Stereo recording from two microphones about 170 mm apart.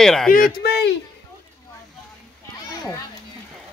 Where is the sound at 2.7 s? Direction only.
20° left (ahead or behind).